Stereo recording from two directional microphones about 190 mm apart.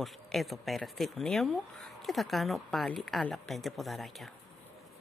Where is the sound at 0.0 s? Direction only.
Centre (ahead or behind).